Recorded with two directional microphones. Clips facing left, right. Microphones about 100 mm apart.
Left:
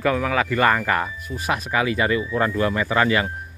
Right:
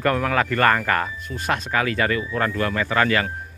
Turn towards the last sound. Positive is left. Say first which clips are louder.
# left 1 dB
turn(degrees=15)  # may be behind; listen again after turning